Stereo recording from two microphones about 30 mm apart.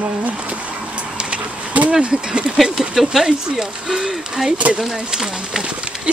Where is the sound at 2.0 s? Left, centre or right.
Right.